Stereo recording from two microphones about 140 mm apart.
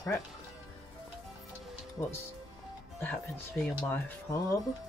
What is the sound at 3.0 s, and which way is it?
Speech, 15° left (ahead or behind).